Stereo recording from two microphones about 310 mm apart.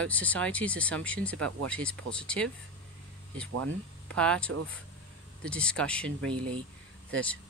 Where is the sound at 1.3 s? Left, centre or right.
Right.